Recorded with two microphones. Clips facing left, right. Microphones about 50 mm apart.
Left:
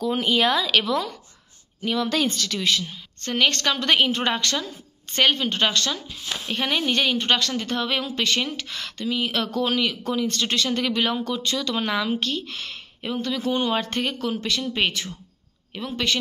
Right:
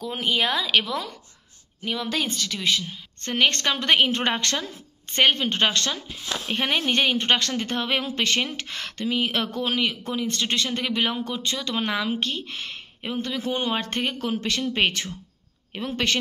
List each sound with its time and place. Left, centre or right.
0.0 s a woman's voice: centre; by 16.2 s right